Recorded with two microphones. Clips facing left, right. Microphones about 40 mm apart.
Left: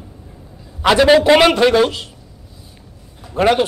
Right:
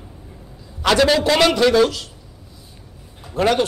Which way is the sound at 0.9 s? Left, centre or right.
Left.